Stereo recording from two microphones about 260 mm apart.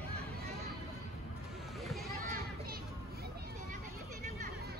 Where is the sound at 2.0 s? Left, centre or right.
Right.